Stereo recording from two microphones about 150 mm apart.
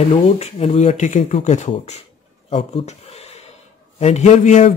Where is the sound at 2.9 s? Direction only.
45° left (ahead or behind).